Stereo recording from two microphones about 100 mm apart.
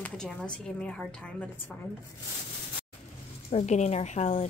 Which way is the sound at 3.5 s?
80° left.